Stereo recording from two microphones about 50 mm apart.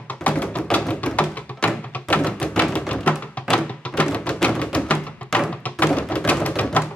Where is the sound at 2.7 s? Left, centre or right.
Left.